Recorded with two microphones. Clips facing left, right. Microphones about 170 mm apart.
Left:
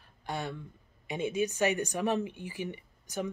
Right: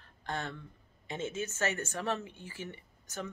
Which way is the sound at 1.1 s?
10° left (ahead or behind).